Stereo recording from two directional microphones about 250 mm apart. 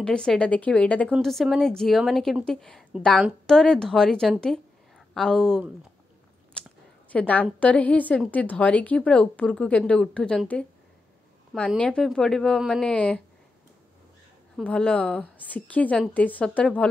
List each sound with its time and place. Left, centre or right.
0.0 s a woman's voice: centre
7.1 s a woman's voice: centre
14.6 s a woman's voice: centre